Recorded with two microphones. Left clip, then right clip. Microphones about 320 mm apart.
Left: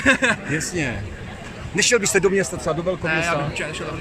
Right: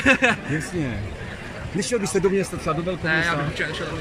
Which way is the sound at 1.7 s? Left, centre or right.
Left.